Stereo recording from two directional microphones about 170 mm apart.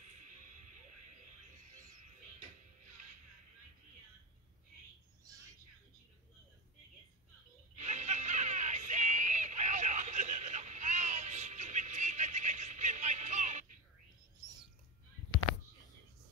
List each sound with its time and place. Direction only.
7.7 s music: 45° right (ahead or behind)